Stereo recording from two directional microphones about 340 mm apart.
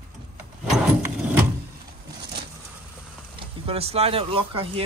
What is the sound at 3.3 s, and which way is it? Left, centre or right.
Speech, centre.